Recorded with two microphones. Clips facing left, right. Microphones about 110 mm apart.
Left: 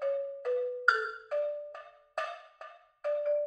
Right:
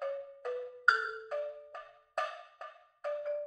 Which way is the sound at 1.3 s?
Centre (ahead or behind).